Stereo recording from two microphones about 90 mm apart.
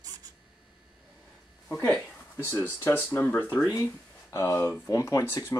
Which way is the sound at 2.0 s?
25° left (ahead or behind).